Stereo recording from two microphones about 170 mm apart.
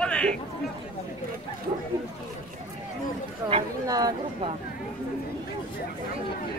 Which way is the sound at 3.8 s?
20° right (ahead or behind).